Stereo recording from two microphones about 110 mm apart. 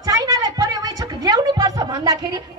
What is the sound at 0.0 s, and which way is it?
Speech, 35° right (ahead or behind).